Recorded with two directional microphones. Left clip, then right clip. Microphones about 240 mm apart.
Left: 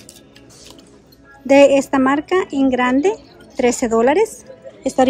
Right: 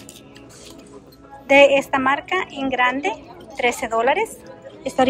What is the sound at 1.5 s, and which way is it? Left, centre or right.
Speech, left.